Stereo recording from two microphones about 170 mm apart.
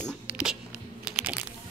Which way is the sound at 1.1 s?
10° right (ahead or behind).